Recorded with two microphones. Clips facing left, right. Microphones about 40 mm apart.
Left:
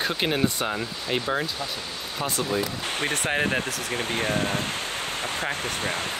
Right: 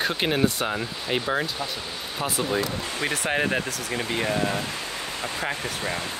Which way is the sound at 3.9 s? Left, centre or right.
Left.